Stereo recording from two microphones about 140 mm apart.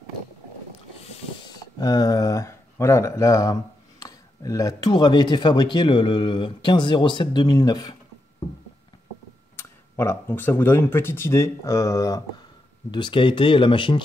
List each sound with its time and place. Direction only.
1.8 s speech: 30° left (ahead or behind)
9.6 s speech: 20° left (ahead or behind)
12.9 s speech: 35° left (ahead or behind)